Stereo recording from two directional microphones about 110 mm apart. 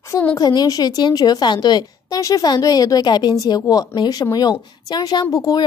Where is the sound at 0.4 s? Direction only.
35° left (ahead or behind).